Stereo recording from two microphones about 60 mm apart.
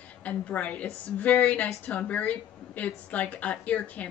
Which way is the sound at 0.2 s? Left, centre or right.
Left.